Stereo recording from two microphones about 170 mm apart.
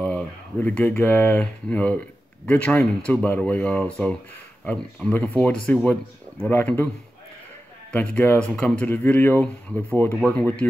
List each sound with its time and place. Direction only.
0.0 s speech: 10° left (ahead or behind)
7.9 s speech: 10° left (ahead or behind)